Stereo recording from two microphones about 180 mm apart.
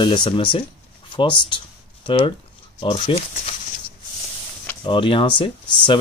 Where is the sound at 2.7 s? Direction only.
25° left (ahead or behind).